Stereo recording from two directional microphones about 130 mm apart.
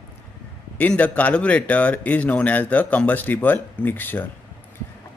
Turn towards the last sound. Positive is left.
turn(degrees=15)  # may be behind; listen again after turning